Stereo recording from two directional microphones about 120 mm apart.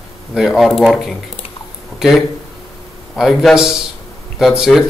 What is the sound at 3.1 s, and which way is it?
A man's voice, centre (ahead or behind).